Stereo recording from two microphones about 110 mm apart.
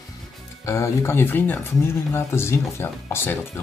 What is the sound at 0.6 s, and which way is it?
Speech, 25° left (ahead or behind).